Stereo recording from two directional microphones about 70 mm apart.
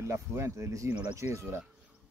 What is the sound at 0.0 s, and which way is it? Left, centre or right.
Speech, right.